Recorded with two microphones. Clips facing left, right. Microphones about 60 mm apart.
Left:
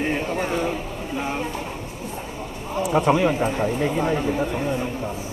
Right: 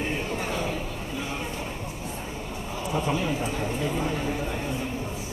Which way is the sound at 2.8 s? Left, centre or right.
Left.